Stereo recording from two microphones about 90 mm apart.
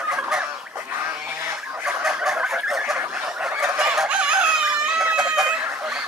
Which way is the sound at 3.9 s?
10° right (ahead or behind).